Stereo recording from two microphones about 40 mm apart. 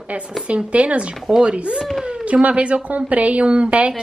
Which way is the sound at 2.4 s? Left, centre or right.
Right.